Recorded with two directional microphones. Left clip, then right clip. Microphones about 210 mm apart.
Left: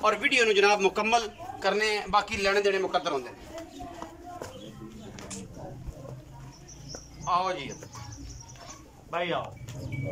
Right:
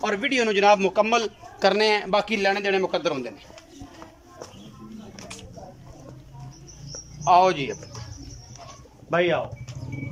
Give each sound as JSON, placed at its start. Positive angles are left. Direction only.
{"t": 0.0, "sound": "a man's voice", "side_deg": -35}
{"t": 7.2, "sound": "speech", "side_deg": -50}
{"t": 9.1, "sound": "speech", "side_deg": -50}